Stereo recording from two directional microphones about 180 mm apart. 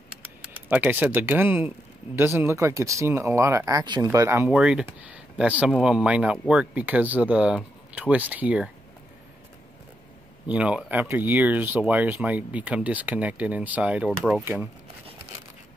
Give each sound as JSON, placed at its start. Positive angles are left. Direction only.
{"t": 0.7, "sound": "speech", "side_deg": -10}
{"t": 10.5, "sound": "speech", "side_deg": -5}